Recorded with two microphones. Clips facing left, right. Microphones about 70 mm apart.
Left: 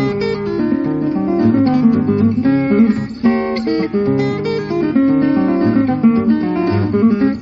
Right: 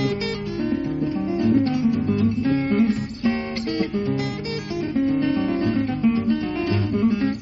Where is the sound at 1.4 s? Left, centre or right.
Left.